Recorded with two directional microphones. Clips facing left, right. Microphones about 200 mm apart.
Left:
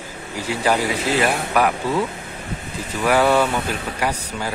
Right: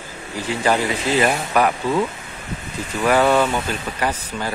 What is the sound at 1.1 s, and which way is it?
Speech, 60° left (ahead or behind).